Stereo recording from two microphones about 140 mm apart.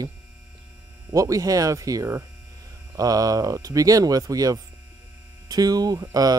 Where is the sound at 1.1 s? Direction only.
25° right (ahead or behind).